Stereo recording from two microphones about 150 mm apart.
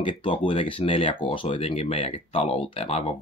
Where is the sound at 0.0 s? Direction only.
35° left (ahead or behind).